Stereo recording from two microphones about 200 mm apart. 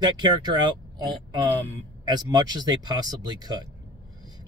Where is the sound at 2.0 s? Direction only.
20° right (ahead or behind).